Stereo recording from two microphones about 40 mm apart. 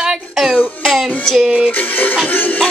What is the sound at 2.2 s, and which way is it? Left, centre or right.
Music, left.